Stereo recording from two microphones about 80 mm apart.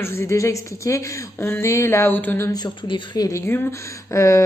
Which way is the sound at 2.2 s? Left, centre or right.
Left.